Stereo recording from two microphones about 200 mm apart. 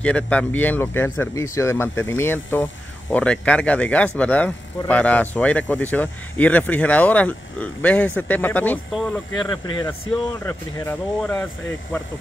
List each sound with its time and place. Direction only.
0.0 s speech: 5° left (ahead or behind)
9.5 s speech: 20° left (ahead or behind)
10.4 s speech: 10° left (ahead or behind)